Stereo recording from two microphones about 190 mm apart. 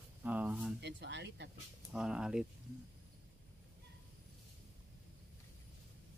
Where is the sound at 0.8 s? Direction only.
60° right (ahead or behind).